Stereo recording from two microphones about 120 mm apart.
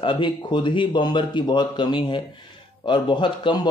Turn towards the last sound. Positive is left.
turn(degrees=40)  # may be behind; listen again after turning